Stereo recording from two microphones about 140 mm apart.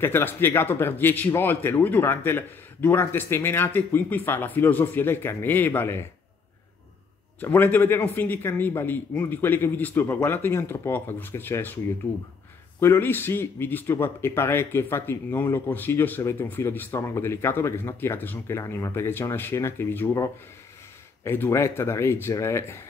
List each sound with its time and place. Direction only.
0.0 s speech: 15° left (ahead or behind)
7.3 s speech: 15° left (ahead or behind)
12.8 s speech: 15° left (ahead or behind)